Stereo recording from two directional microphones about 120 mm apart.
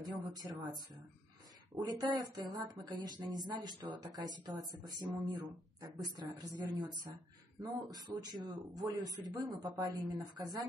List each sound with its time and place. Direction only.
0.0 s speech: 35° right (ahead or behind)
1.8 s speech: 35° right (ahead or behind)